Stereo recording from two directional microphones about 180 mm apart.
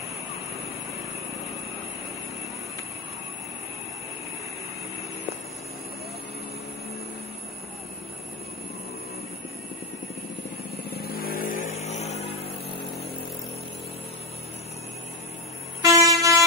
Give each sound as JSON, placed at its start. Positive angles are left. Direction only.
{"t": 10.9, "sound": "vehicle", "side_deg": 60}
{"t": 11.7, "sound": "vehicle", "side_deg": 35}
{"t": 15.8, "sound": "vehicle", "side_deg": -20}